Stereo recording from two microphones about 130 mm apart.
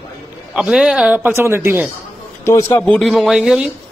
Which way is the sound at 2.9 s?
Centre (ahead or behind).